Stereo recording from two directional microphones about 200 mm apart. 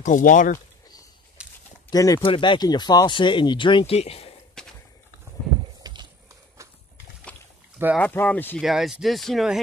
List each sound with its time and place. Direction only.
0.0 s speech: 40° left (ahead or behind)
1.4 s a sound: 5° right (ahead or behind)
1.9 s speech: 15° left (ahead or behind)
4.6 s a sound: 5° left (ahead or behind)
5.8 s clip-clop: 20° right (ahead or behind)
6.6 s horse: 15° right (ahead or behind)
8.0 s speech: 10° left (ahead or behind)